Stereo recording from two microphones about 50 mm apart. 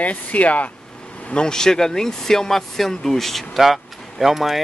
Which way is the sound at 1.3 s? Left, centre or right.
Centre.